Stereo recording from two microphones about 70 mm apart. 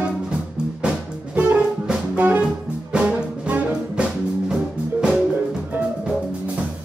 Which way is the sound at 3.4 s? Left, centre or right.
Right.